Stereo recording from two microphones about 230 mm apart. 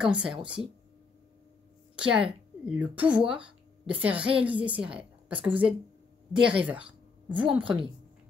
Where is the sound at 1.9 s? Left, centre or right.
Centre.